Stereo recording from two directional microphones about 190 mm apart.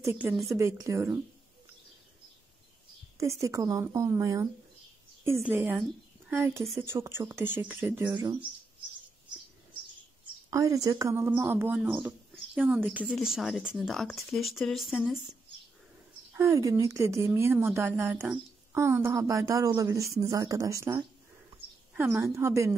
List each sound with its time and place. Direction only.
0.0 s speech: 10° right (ahead or behind)
0.3 s speech: centre (ahead or behind)
0.6 s a woman's voice: 15° right (ahead or behind)
3.2 s a woman's voice: 15° right (ahead or behind)
10.5 s a woman's voice: 15° right (ahead or behind); by 15.1 s centre (ahead or behind)
16.3 s a woman's voice: 15° right (ahead or behind)